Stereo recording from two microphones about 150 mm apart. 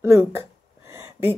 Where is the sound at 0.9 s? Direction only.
20° right (ahead or behind).